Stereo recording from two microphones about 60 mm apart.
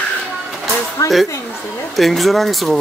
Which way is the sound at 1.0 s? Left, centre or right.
Left.